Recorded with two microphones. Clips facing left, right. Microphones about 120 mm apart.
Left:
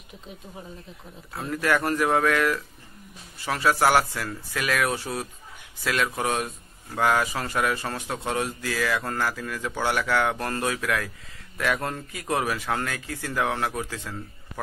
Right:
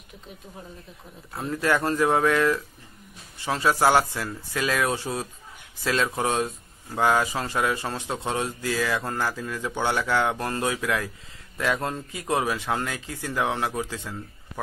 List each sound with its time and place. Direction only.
1.5 s speech: 25° right (ahead or behind)